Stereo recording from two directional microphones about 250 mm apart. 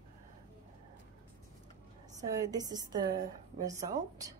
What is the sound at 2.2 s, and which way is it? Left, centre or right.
A woman's voice, centre.